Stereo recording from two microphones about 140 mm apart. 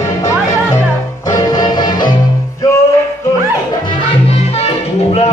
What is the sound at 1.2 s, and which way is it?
Music, 25° left (ahead or behind).